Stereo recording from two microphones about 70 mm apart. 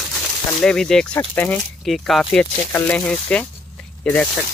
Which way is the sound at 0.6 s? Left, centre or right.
Centre.